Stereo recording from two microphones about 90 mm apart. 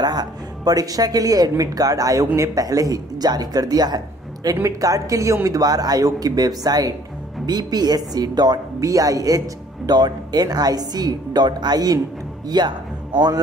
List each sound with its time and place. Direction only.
0.0 s speech: 50° right (ahead or behind)